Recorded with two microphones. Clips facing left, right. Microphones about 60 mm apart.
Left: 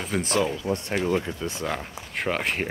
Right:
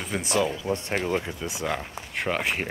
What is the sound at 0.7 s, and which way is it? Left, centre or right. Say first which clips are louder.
Speech: left 1 dB; right.